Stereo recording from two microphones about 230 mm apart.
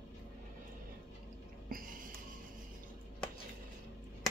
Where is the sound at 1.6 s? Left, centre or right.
Right.